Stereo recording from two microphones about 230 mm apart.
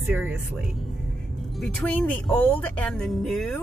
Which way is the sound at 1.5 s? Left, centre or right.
Centre.